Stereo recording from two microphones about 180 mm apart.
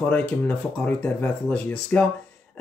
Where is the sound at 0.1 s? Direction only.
10° left (ahead or behind).